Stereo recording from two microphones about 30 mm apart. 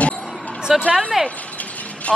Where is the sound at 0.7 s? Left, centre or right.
Centre.